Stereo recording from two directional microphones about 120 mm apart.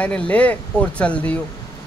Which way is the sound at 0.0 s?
10° left (ahead or behind).